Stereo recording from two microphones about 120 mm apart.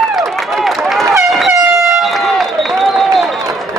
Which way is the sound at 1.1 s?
5° right (ahead or behind).